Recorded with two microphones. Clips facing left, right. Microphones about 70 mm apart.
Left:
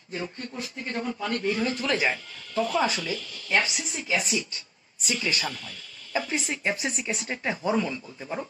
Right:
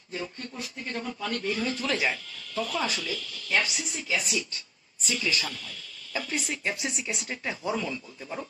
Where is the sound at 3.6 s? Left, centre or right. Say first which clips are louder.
Left 1 dB; centre.